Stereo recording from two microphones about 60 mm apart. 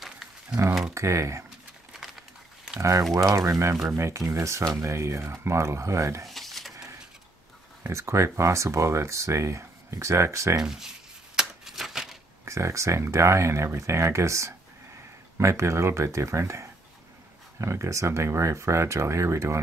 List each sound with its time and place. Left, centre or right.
0.0 s a sound: centre
0.9 s speech: right
2.0 s crumpling: centre
2.8 s speech: right
6.2 s a sound: centre
7.9 s speech: right
10.6 s speech: centre
11.3 s typewriter: centre
12.4 s speech: right